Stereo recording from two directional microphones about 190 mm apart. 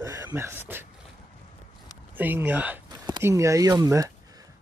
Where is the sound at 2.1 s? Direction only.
10° right (ahead or behind).